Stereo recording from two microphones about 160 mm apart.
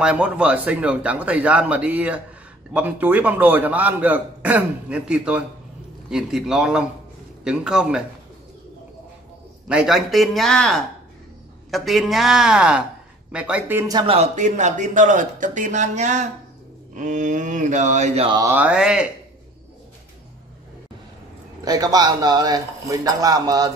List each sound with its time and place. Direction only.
0.0 s a man's voice: 5° right (ahead or behind)
9.7 s a man's voice: 5° right (ahead or behind)
13.8 s a man's voice: 25° right (ahead or behind)
14.1 s speech: 45° right (ahead or behind)
18.3 s a man's voice: 15° right (ahead or behind)
21.6 s a man's voice: 25° right (ahead or behind)